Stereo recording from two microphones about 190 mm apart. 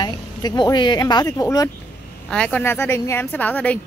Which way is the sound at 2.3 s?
5° left (ahead or behind).